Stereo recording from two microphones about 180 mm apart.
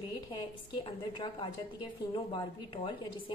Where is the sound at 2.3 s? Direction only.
30° left (ahead or behind).